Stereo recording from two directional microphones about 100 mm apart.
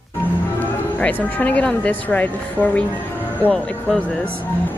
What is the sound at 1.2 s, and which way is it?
A woman's voice, 15° left (ahead or behind).